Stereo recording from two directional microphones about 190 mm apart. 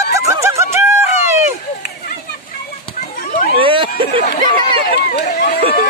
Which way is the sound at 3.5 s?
25° right (ahead or behind).